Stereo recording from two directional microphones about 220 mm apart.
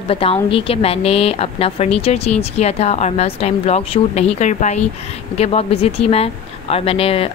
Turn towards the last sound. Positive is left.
turn(degrees=25)  # may be behind; listen again after turning